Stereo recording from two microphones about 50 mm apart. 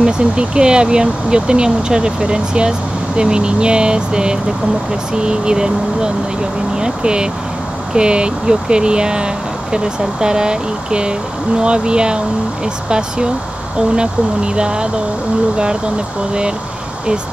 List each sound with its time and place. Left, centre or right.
0.0 s speech: right
13.7 s speech: centre